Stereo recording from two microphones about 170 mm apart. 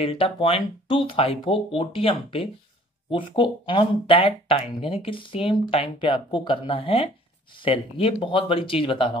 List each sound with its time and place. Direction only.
0.0 s speech: 35° left (ahead or behind)